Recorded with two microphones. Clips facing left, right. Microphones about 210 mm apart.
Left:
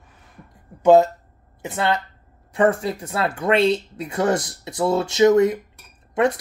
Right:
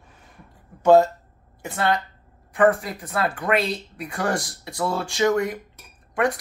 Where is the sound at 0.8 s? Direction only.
20° left (ahead or behind).